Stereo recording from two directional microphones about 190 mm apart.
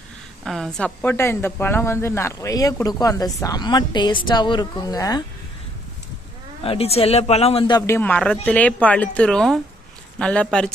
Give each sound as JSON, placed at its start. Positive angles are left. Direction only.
{"t": 0.5, "sound": "a woman's voice", "side_deg": 5}
{"t": 6.6, "sound": "a woman's voice", "side_deg": 30}